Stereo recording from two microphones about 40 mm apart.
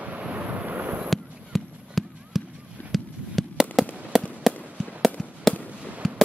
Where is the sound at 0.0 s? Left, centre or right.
Right.